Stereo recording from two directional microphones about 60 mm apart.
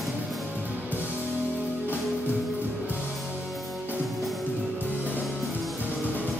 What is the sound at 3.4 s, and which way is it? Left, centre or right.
Music, centre.